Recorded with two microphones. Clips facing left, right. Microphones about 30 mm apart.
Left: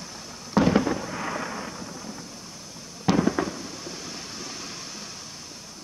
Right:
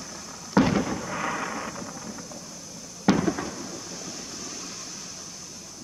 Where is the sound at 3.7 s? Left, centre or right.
Left.